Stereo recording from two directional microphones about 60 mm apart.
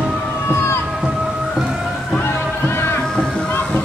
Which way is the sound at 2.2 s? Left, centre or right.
Left.